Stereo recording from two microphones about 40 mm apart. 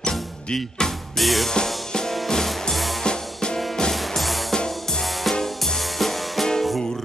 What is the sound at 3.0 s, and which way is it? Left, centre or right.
Music, centre.